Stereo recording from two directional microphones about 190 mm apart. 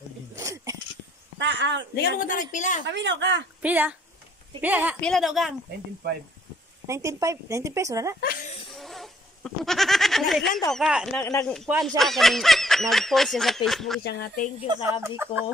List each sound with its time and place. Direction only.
0.4 s a sound: 15° right (ahead or behind)
1.4 s speech: 70° right (ahead or behind)
2.0 s a woman's voice: 45° left (ahead or behind)
2.9 s speech: 70° right (ahead or behind)
3.6 s speech: 10° right (ahead or behind)
6.0 s speech: 65° right (ahead or behind)
6.9 s speech: 15° right (ahead or behind)
8.2 s speech: 50° left (ahead or behind)
8.7 s a sound: centre (ahead or behind)
10.7 s speech: centre (ahead or behind)
14.0 s speech: 60° left (ahead or behind)
14.7 s speech: 15° right (ahead or behind)